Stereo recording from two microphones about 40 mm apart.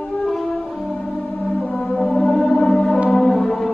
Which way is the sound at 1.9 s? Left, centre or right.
Centre.